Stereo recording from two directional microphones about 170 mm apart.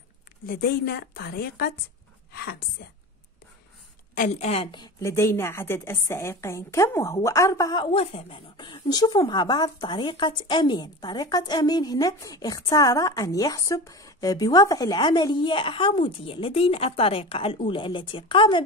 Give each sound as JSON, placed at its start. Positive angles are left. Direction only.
{"t": 0.5, "sound": "a woman's voice", "side_deg": 65}
{"t": 4.2, "sound": "a woman's voice", "side_deg": 40}
{"t": 4.6, "sound": "a woman's voice", "side_deg": 25}